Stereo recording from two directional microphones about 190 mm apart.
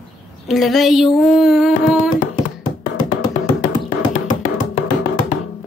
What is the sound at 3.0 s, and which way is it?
Music, 45° left (ahead or behind).